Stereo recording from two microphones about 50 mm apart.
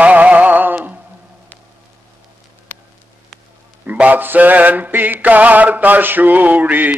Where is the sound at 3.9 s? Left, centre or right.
Right.